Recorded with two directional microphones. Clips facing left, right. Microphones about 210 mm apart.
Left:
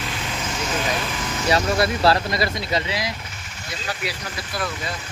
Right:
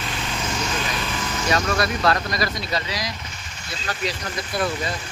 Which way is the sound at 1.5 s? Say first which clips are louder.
Left 3 dB; 30° left (ahead or behind).